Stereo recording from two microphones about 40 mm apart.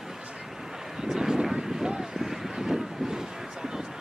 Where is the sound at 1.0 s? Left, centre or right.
Centre.